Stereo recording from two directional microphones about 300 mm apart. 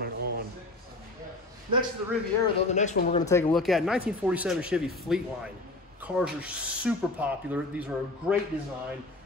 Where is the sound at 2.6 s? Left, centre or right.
Left.